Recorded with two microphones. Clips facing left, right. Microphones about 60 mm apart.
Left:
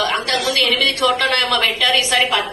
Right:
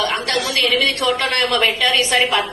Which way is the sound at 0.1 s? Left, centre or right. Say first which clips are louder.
Left 1 dB; right.